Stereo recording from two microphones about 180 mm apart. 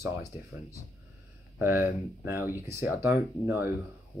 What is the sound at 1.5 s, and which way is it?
Speech, 10° right (ahead or behind).